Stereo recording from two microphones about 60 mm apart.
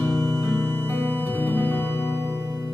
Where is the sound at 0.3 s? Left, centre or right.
Left.